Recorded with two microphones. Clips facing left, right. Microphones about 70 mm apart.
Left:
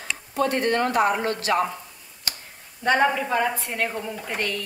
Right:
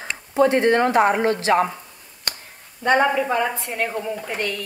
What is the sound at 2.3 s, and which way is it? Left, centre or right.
Finger snapping, right.